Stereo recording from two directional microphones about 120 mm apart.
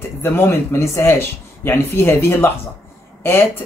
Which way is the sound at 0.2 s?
20° left (ahead or behind).